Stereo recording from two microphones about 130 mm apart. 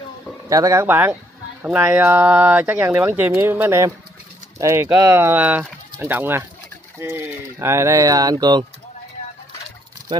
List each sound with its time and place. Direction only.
0.5 s speech: 25° right (ahead or behind)
0.8 s speech: 15° right (ahead or behind); by 8.6 s 30° right (ahead or behind)